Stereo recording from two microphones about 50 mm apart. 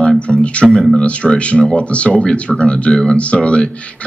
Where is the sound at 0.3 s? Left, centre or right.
Left.